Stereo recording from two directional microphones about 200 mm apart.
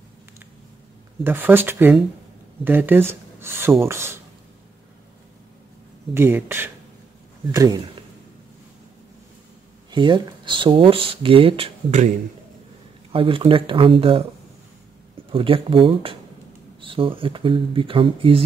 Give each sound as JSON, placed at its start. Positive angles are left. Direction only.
{"t": 1.2, "sound": "speech", "side_deg": -10}
{"t": 6.1, "sound": "speech", "side_deg": -10}
{"t": 9.8, "sound": "speech", "side_deg": -25}
{"t": 13.1, "sound": "speech", "side_deg": -25}
{"t": 15.3, "sound": "speech", "side_deg": -25}